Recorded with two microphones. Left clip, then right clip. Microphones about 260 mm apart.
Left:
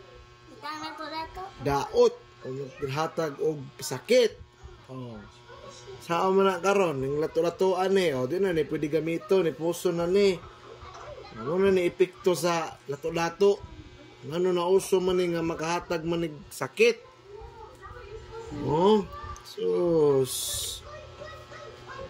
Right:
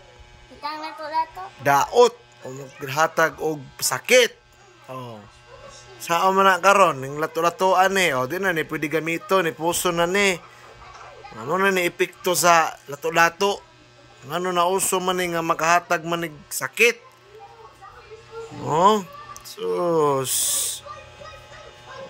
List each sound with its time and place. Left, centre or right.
0.6 s a woman's voice: right
1.6 s speech: centre
5.9 s speech: centre
11.5 s speech: centre
18.7 s speech: centre